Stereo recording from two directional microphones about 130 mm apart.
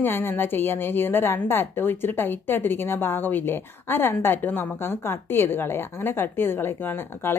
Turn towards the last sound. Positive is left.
turn(degrees=15)  # may be behind; listen again after turning